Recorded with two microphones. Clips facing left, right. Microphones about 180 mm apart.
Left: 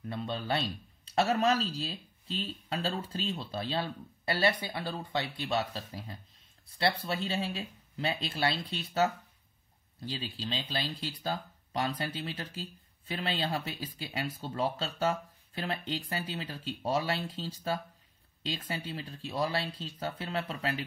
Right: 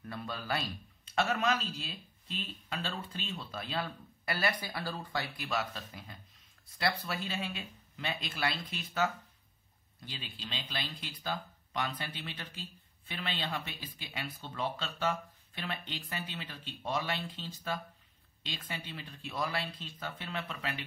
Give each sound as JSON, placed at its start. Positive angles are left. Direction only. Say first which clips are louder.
{"t": 0.0, "sound": "speech", "louder": "left 5 dB", "side_deg": 25}